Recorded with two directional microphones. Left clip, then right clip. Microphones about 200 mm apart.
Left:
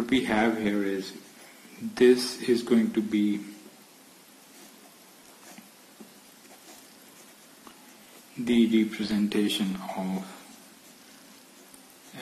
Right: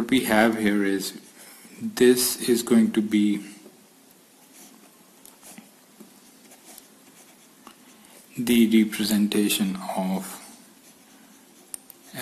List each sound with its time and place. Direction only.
0.0 s speech: 25° right (ahead or behind)
2.0 s speech: 20° right (ahead or behind)
8.5 s speech: 35° right (ahead or behind)